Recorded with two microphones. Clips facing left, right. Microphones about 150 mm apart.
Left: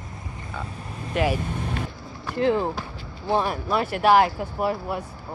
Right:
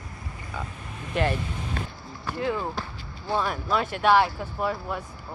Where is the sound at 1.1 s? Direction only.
5° left (ahead or behind).